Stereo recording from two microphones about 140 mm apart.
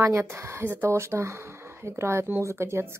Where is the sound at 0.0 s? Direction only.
20° right (ahead or behind).